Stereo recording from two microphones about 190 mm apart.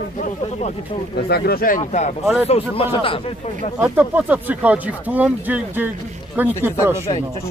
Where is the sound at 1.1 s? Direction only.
55° left (ahead or behind); by 3.7 s 30° left (ahead or behind).